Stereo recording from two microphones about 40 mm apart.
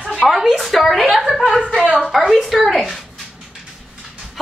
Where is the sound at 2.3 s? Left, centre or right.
Centre.